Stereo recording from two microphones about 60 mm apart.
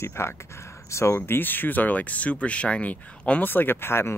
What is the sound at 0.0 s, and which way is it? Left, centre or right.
Speech, left.